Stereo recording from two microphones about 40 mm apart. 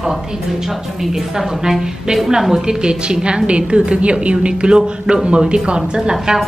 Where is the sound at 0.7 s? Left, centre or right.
Centre.